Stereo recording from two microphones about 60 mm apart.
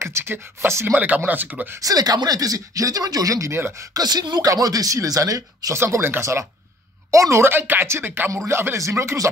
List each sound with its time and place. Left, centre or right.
0.0 s speech: right
0.9 s speech: right
1.8 s speech: right
3.9 s speech: right
7.1 s speech: right
8.7 s speech: right